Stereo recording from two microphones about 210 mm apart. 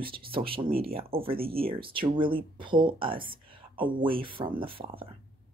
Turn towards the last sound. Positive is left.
turn(degrees=-25)  # may be behind; listen again after turning